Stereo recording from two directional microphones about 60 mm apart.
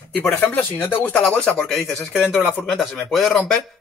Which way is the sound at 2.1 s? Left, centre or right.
Right.